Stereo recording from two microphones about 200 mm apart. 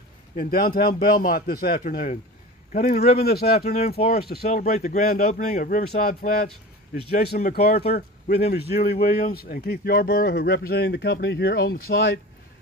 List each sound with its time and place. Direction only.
0.4 s speech: 50° left (ahead or behind)
4.5 s speech: 40° left (ahead or behind); by 12.2 s 55° left (ahead or behind)